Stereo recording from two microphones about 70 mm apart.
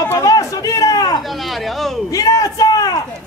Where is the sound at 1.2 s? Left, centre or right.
Centre.